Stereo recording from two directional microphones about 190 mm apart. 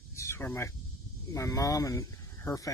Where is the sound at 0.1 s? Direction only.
15° left (ahead or behind).